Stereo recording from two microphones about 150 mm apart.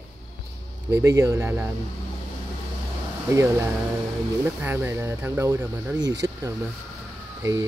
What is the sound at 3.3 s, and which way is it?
Speech, 20° right (ahead or behind).